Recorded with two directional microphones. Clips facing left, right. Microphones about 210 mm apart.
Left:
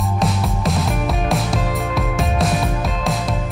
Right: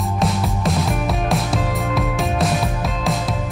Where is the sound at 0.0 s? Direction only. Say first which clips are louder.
Even; centre (ahead or behind).